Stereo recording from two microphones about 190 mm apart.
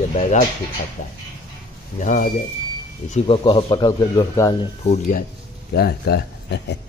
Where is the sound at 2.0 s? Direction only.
40° left (ahead or behind).